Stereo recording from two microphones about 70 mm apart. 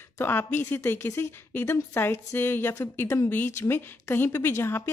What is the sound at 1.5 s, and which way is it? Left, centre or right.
A woman's voice, left.